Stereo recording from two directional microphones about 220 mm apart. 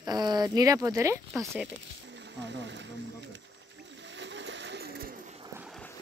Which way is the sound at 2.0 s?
50° right (ahead or behind).